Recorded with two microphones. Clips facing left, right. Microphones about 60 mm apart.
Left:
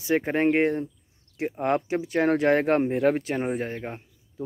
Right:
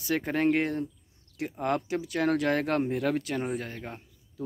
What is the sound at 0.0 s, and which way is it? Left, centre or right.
Speech, left.